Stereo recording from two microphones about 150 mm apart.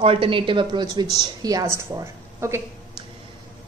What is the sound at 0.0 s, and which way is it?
A woman's voice, 40° right (ahead or behind).